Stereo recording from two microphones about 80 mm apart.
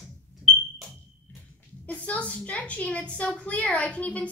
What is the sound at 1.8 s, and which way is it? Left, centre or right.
A woman's voice, centre.